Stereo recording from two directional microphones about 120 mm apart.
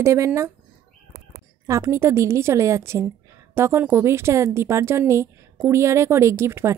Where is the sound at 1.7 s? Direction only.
25° right (ahead or behind).